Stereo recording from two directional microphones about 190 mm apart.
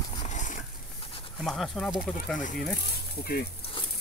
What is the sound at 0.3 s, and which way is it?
Horse, 40° left (ahead or behind).